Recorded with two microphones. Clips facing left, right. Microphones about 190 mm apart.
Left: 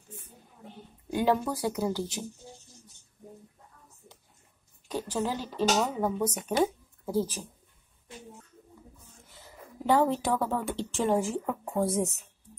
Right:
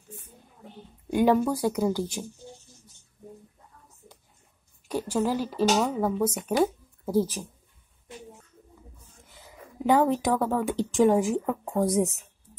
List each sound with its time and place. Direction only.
1.1 s speech: 15° right (ahead or behind)
4.8 s speech: 10° right (ahead or behind)
9.3 s speech: 15° right (ahead or behind)